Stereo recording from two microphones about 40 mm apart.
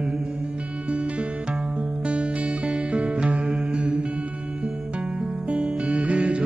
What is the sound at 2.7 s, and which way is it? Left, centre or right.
Music, right.